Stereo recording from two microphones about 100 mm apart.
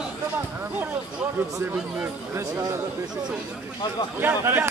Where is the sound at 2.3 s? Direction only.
30° right (ahead or behind).